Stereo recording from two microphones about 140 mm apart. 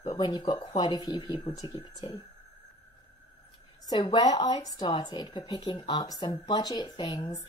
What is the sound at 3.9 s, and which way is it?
A woman's voice, 30° left (ahead or behind).